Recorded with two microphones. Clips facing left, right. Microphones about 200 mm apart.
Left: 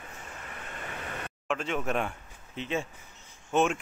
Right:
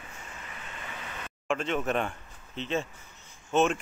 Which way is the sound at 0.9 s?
55° left (ahead or behind).